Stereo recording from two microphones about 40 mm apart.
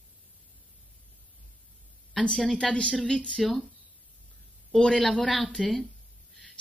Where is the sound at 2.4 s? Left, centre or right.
Left.